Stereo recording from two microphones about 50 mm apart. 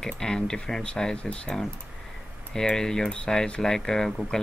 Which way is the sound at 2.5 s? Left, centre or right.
Centre.